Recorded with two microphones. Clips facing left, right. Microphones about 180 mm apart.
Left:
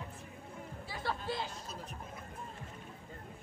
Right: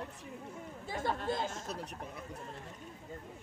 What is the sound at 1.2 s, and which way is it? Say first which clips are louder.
Speech: right 4 dB; 45° right (ahead or behind).